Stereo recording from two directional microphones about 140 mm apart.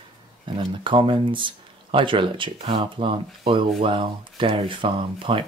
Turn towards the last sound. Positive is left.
turn(degrees=-40)  # may be behind; listen again after turning